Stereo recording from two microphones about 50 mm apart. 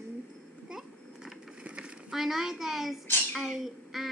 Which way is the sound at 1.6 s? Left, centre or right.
Right.